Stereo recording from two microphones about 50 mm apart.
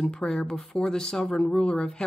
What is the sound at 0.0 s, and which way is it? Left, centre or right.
A woman's voice, left.